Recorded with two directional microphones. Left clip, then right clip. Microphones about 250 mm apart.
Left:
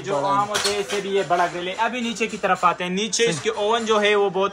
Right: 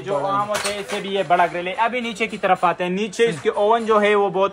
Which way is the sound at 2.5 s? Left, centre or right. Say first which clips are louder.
Right 1 dB; right.